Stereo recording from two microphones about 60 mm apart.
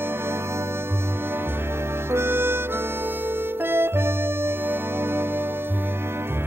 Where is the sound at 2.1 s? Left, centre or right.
Right.